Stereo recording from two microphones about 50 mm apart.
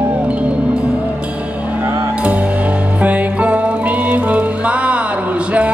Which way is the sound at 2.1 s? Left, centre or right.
Right.